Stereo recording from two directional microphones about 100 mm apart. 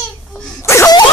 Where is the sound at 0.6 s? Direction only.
25° left (ahead or behind).